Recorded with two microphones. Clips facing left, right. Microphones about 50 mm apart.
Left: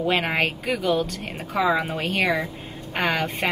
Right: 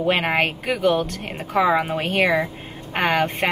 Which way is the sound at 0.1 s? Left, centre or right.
Centre.